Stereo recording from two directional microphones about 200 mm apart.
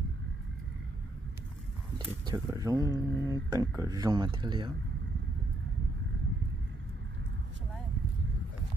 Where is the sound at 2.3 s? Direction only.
15° right (ahead or behind).